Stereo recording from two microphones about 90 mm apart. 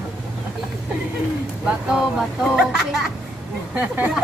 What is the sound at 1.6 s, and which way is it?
Speech, 10° right (ahead or behind).